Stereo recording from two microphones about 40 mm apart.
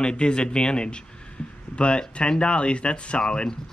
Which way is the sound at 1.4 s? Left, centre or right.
Left.